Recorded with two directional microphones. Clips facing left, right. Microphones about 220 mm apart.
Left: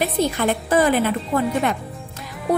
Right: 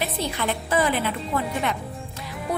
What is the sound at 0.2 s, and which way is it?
A woman's voice, 45° left (ahead or behind).